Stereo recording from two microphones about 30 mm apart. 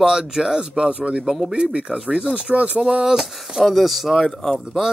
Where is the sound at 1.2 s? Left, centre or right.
Centre.